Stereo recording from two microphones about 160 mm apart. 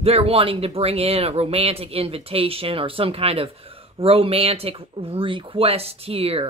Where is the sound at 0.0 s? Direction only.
40° right (ahead or behind).